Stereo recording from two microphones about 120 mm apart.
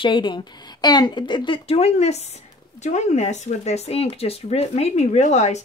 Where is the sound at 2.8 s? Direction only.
75° left (ahead or behind).